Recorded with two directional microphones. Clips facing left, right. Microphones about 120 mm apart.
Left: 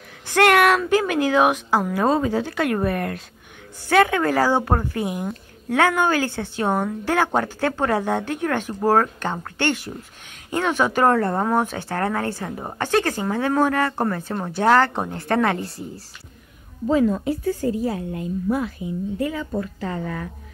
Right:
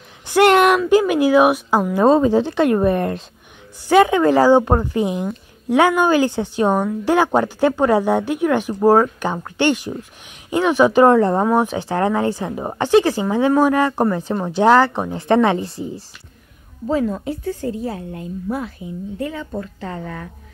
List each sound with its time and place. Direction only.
0.3 s a sound: 20° right (ahead or behind)
0.7 s a woman's voice: 15° right (ahead or behind)
16.8 s speech: 30° right (ahead or behind)